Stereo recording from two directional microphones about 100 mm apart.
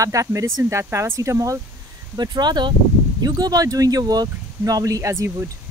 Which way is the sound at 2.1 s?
45° right (ahead or behind).